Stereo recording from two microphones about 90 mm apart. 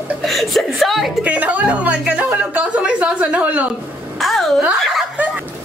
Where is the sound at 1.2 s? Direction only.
15° right (ahead or behind).